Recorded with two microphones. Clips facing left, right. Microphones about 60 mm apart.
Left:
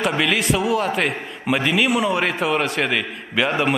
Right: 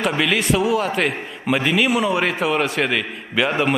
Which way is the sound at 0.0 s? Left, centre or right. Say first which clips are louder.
Even; centre.